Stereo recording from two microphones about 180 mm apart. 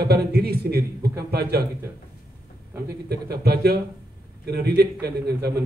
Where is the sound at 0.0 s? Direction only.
60° right (ahead or behind).